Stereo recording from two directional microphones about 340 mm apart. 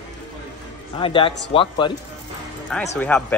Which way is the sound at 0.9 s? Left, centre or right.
Centre.